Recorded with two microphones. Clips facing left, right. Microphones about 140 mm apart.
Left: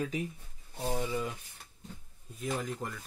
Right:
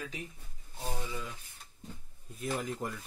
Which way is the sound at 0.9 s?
50° left (ahead or behind).